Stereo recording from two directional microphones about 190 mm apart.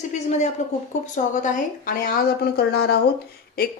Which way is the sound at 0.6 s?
35° left (ahead or behind).